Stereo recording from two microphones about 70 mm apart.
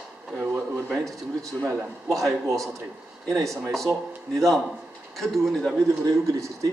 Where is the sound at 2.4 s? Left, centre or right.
Right.